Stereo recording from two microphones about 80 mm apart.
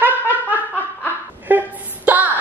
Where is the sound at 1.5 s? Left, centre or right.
Right.